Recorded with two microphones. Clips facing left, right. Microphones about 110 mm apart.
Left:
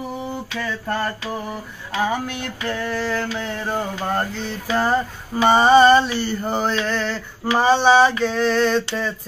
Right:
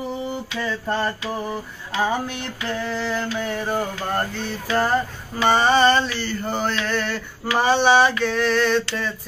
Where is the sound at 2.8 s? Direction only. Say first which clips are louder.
Left 2 dB; 20° right (ahead or behind).